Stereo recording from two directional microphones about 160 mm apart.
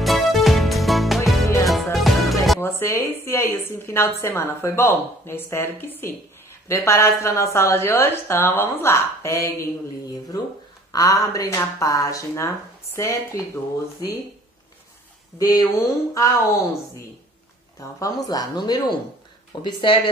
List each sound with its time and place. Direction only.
0.0 s music: centre (ahead or behind)
2.6 s a woman's voice: 15° left (ahead or behind)
10.9 s speech: 20° left (ahead or behind)
15.3 s speech: 25° left (ahead or behind)
17.7 s speech: 20° left (ahead or behind)